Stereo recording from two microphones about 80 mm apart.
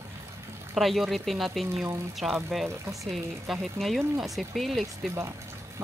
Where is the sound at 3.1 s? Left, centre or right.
Centre.